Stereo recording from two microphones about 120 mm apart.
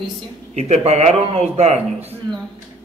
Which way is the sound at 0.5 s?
65° right (ahead or behind).